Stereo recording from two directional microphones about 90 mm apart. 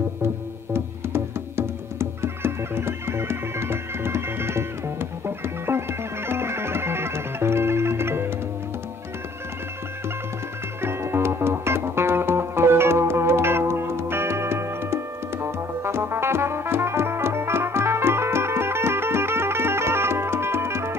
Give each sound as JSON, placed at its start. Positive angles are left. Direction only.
{"t": 0.7, "sound": "music", "side_deg": -30}
{"t": 10.8, "sound": "music", "side_deg": -25}